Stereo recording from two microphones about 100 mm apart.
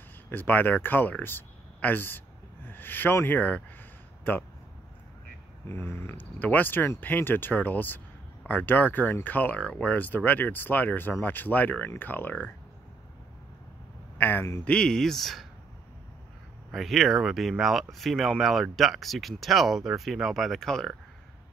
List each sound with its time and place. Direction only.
0.3 s speech: 20° left (ahead or behind)
5.7 s speech: 25° left (ahead or behind)
14.1 s a man's voice: 20° left (ahead or behind)
14.6 s speech: 10° left (ahead or behind)
16.7 s speech: centre (ahead or behind)